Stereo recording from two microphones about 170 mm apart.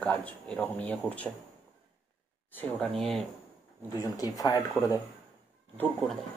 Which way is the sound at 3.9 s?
20° left (ahead or behind).